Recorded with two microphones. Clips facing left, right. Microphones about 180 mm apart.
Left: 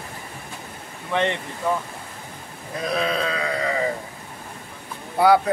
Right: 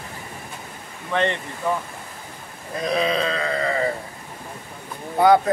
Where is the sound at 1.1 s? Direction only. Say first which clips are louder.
Even; 15° left (ahead or behind).